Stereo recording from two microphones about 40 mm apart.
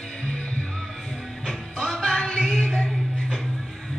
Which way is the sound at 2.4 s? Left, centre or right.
Centre.